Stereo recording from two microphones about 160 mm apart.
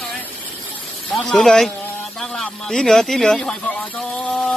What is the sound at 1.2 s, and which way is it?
A man's voice, 5° left (ahead or behind).